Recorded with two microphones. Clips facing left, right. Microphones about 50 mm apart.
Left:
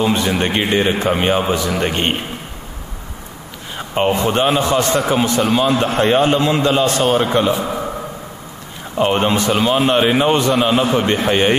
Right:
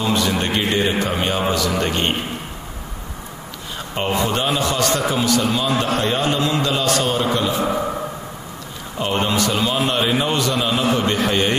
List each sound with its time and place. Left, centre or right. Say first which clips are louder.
0.0 s a man's voice: left 3 dB; left
3.7 s a man's voice: left 5 dB; left
7.1 s a man's voice: left 4 dB; centre
7.3 s a man's voice: left 5 dB; left
8.9 s a man's voice: left 5 dB; left